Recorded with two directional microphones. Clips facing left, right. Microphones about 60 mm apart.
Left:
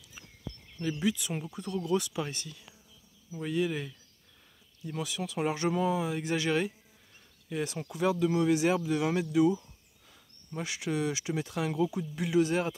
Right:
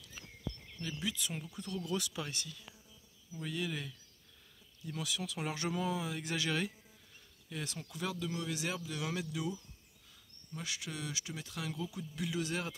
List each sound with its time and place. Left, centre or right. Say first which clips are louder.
0.7 s speech: left 12 dB; left
1.0 s speech: left 8 dB; centre
3.3 s speech: left 9 dB; centre
8.3 s speech: left 13 dB; left
9.2 s speech: left 14 dB; left
10.6 s speech: left 6 dB; centre
10.9 s speech: left 11 dB; left
11.7 s speech: left 12 dB; left
12.2 s speech: left 10 dB; centre